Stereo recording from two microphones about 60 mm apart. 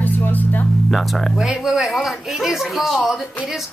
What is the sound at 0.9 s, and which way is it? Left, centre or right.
Speech, centre.